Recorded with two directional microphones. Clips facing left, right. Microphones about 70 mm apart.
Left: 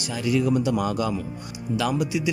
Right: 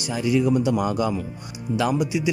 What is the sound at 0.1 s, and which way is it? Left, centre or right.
A man's voice, centre.